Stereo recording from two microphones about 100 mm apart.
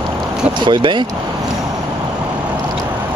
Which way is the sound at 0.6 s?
55° right (ahead or behind).